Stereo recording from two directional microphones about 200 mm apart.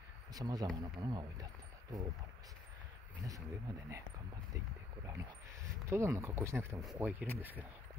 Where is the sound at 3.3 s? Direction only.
15° right (ahead or behind).